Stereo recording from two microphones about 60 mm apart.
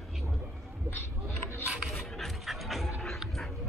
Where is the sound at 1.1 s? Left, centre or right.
Right.